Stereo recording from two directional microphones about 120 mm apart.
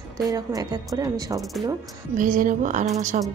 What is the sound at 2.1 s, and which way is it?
Speech, 90° right.